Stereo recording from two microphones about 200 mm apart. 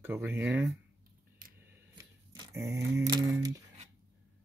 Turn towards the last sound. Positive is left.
turn(degrees=-15)  # may be behind; listen again after turning